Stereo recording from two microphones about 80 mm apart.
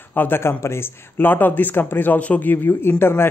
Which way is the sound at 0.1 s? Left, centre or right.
Left.